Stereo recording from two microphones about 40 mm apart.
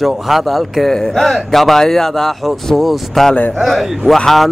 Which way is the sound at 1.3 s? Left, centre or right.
Centre.